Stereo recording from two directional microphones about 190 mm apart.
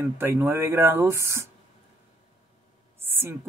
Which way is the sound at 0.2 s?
10° right (ahead or behind).